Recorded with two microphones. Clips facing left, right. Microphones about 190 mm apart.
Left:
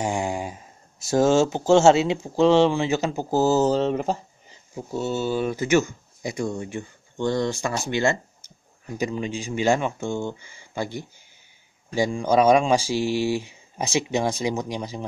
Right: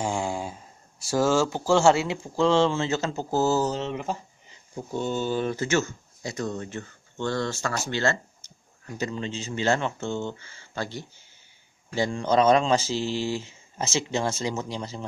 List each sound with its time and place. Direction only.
0.0 s speech: 15° left (ahead or behind)
3.6 s speech: 35° left (ahead or behind)
4.7 s speech: 5° left (ahead or behind)